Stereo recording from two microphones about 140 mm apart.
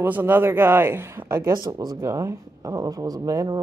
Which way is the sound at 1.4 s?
30° right (ahead or behind).